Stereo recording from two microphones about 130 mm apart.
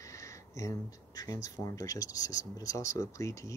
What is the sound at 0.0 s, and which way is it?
Speech, 25° left (ahead or behind).